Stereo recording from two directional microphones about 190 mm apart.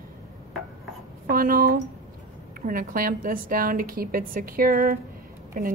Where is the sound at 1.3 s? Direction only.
50° right (ahead or behind).